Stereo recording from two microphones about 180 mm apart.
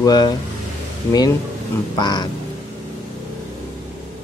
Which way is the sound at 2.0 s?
25° left (ahead or behind).